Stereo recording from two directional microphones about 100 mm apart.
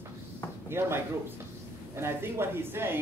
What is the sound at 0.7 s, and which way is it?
Speech, 25° right (ahead or behind).